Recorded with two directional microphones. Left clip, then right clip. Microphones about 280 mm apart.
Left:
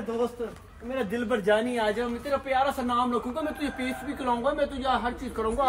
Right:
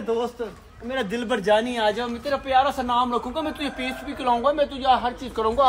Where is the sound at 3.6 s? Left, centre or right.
Centre.